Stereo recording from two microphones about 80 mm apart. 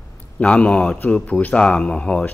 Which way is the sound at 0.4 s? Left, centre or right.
Centre.